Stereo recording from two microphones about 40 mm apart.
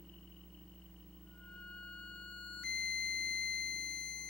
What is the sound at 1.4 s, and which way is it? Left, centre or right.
Music, left.